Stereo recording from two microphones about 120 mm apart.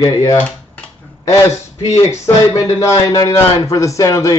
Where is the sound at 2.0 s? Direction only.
25° left (ahead or behind).